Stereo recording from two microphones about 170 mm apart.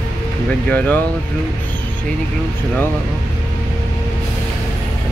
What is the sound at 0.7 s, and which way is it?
Speech, 10° left (ahead or behind).